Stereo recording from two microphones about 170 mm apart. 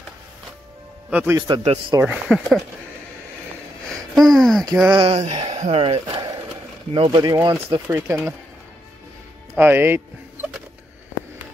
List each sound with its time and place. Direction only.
1.1 s a man's voice: 10° right (ahead or behind)
1.5 s speech: 35° right (ahead or behind)
2.0 s speech: 5° right (ahead or behind)
3.9 s a sound: centre (ahead or behind)
4.9 s a man's voice: 30° right (ahead or behind)
9.6 s speech: 10° right (ahead or behind)